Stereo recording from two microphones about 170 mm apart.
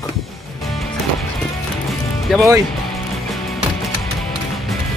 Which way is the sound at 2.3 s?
Centre (ahead or behind).